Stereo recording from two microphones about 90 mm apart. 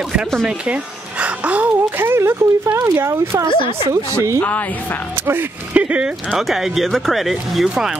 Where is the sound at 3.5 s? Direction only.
65° left (ahead or behind).